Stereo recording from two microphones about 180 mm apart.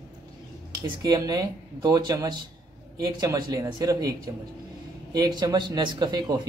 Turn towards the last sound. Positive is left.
turn(degrees=-20)  # may be behind; listen again after turning